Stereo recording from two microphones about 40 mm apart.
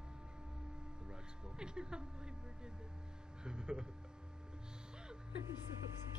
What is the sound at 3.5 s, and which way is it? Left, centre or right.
Speech, right.